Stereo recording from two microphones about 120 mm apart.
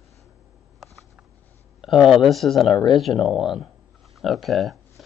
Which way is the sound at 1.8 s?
5° right (ahead or behind).